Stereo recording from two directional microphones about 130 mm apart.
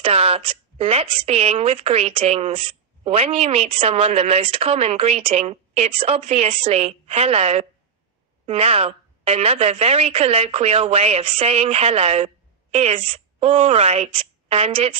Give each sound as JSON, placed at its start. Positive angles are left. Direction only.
{"t": 0.0, "sound": "a woman's voice", "side_deg": -50}